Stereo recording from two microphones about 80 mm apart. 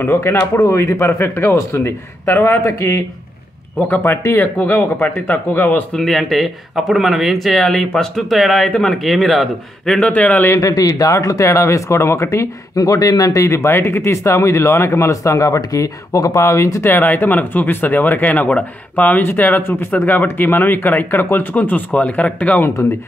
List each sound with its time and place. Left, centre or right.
0.0 s speech: left
5.9 s speech: centre
9.9 s speech: centre
10.6 s speech: left
12.7 s speech: left
16.8 s speech: left